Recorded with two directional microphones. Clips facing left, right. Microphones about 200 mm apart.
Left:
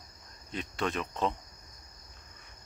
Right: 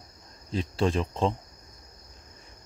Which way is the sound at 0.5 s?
30° right (ahead or behind).